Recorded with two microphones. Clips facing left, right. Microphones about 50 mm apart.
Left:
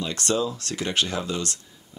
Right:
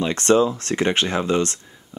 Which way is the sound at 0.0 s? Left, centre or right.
Right.